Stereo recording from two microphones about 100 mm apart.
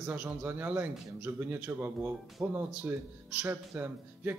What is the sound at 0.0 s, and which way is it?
A man's voice, 15° right (ahead or behind).